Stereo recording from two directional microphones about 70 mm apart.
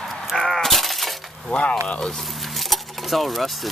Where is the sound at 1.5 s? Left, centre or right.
Centre.